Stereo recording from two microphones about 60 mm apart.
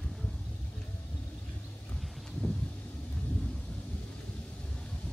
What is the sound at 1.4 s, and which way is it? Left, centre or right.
Vehicle, left.